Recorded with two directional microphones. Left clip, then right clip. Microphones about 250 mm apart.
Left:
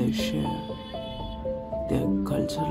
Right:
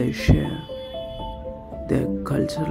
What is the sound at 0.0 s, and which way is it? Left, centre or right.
Music, centre.